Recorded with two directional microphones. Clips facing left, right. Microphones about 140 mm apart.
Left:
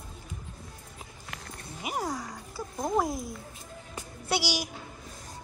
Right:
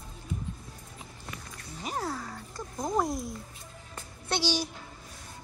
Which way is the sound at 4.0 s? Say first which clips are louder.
Left 2 dB; 10° left (ahead or behind).